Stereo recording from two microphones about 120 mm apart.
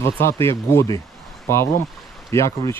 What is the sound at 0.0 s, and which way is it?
Speech, 20° left (ahead or behind).